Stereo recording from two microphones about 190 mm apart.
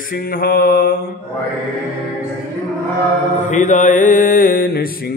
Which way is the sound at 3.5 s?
40° left (ahead or behind).